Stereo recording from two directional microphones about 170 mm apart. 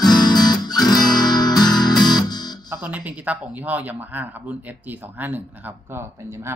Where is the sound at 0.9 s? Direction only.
25° left (ahead or behind).